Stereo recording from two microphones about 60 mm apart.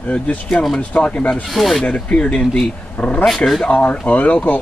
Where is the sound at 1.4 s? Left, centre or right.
Centre.